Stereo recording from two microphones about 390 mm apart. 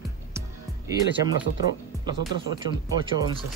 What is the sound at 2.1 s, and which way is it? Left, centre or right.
Speech, centre.